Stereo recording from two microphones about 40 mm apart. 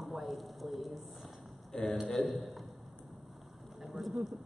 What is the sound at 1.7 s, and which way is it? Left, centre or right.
Speech, centre.